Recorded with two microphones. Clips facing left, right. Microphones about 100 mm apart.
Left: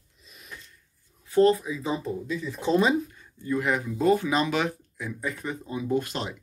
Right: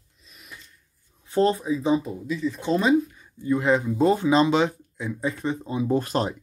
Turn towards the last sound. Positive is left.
turn(degrees=-40)  # may be behind; listen again after turning